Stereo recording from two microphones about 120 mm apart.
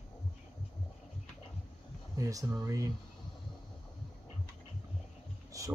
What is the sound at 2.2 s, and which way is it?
Speech, 30° right (ahead or behind).